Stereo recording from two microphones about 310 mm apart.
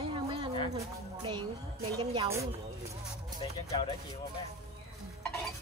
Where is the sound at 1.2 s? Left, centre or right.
Centre.